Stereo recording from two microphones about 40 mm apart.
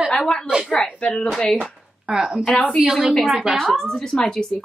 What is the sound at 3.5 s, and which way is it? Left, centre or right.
A woman's voice, centre.